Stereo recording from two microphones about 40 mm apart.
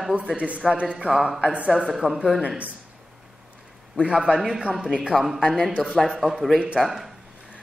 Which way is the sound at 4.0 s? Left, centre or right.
Centre.